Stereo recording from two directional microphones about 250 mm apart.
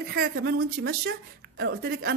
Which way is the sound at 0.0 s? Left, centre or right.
Right.